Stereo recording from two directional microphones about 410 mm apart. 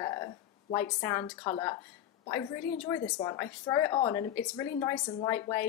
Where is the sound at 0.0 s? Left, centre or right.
Centre.